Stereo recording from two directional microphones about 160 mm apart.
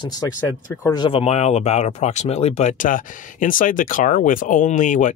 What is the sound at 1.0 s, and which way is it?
Speech, 40° left (ahead or behind).